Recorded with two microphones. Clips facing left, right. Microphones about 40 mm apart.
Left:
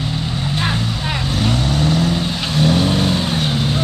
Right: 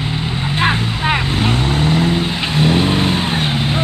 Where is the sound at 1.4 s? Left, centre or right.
Right.